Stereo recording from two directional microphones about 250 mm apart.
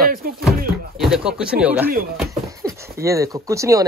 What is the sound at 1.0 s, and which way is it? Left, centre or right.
Speech, centre.